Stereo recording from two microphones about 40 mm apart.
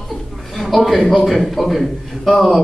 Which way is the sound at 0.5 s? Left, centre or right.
Centre.